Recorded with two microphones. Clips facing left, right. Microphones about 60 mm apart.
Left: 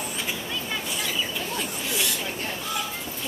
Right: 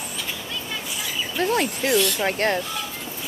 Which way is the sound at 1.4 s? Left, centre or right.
Right.